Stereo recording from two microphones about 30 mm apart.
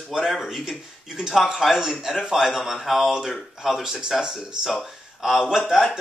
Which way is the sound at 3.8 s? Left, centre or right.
Right.